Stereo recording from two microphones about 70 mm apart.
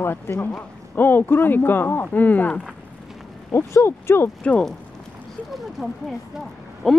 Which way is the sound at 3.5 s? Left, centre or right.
Left.